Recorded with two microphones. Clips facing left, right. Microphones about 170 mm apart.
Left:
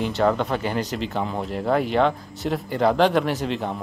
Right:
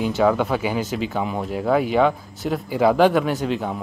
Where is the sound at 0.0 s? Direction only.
Centre (ahead or behind).